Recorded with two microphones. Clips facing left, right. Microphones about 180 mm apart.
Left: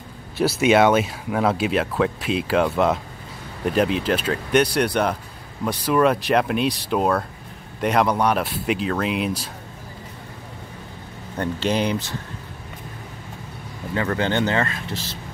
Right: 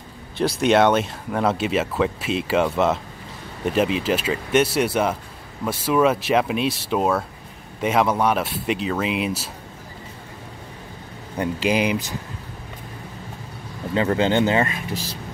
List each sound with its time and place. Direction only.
0.4 s speech: 5° left (ahead or behind)
11.3 s speech: 10° right (ahead or behind)
13.9 s speech: 20° right (ahead or behind)